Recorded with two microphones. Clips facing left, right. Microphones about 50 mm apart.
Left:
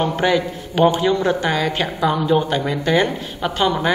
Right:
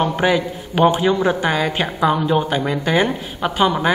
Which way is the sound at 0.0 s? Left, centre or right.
Centre.